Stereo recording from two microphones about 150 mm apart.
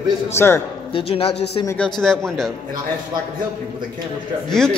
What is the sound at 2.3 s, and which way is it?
Speech, 5° left (ahead or behind).